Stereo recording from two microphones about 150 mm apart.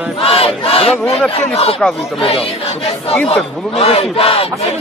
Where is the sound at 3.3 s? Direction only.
40° left (ahead or behind).